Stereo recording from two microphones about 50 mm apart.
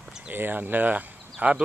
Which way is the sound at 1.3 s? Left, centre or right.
Right.